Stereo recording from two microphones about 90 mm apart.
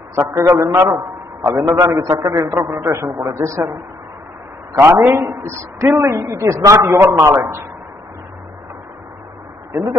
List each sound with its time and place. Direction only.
0.1 s a man's voice: 30° right (ahead or behind)
4.7 s a man's voice: 30° right (ahead or behind)
5.8 s a man's voice: 40° right (ahead or behind)
9.7 s a man's voice: 30° right (ahead or behind)